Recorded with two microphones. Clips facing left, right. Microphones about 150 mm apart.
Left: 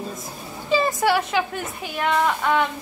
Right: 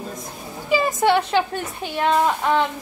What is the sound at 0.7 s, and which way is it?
A woman's voice, 15° right (ahead or behind).